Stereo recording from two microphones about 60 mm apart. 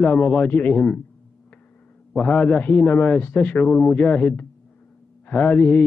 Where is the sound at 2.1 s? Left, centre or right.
Left.